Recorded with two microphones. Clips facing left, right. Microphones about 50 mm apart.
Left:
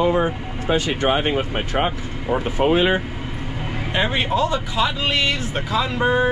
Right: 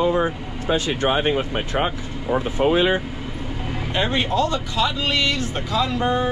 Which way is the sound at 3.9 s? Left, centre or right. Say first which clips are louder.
Left 1 dB; centre.